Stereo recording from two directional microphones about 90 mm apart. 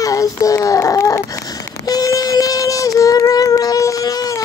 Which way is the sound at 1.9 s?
45° left (ahead or behind).